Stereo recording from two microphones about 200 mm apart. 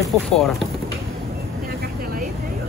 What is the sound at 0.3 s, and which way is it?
Speech, centre (ahead or behind).